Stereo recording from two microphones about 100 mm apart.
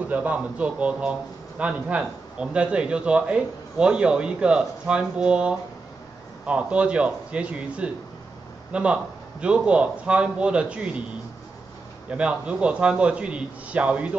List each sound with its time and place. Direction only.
0.1 s a man's voice: 15° right (ahead or behind)
12.1 s a man's voice: 10° right (ahead or behind)